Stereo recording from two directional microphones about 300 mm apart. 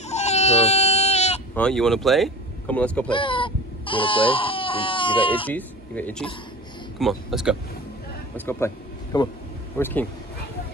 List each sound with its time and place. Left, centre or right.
0.1 s baby cry: left
1.5 s speech: centre
3.1 s speech: centre
5.5 s speech: centre